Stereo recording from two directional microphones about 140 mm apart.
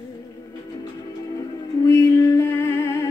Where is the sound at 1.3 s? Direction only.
25° left (ahead or behind).